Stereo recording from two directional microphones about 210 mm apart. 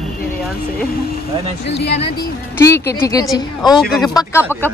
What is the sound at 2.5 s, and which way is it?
Speech, 10° left (ahead or behind).